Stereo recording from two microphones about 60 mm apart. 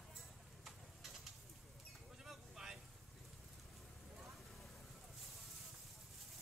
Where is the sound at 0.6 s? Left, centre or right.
Centre.